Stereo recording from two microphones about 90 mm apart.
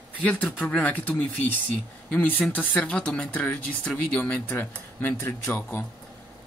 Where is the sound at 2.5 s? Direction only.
20° left (ahead or behind).